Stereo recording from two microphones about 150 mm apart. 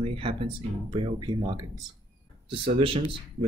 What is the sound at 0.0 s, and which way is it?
Speech, 35° right (ahead or behind).